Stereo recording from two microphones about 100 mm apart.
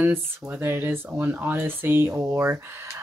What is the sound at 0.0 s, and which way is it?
Speech, 20° right (ahead or behind).